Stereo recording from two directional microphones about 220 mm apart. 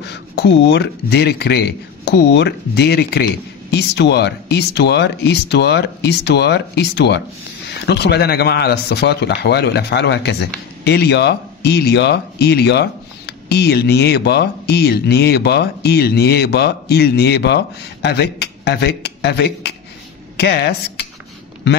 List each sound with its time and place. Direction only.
0.1 s speech: 50° left (ahead or behind)